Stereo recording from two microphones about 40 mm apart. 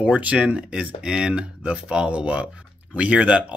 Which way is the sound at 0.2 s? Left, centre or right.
Right.